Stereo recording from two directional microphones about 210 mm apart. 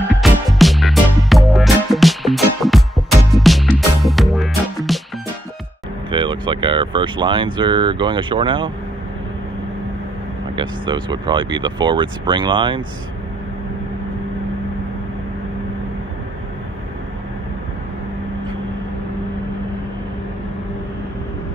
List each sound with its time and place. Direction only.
0.2 s music: centre (ahead or behind)
6.0 s speech: 20° right (ahead or behind)
10.5 s speech: 20° right (ahead or behind)